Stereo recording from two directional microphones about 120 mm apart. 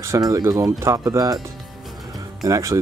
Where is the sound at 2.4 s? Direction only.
25° right (ahead or behind).